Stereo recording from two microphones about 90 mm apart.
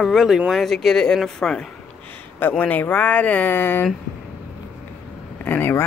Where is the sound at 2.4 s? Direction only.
15° left (ahead or behind).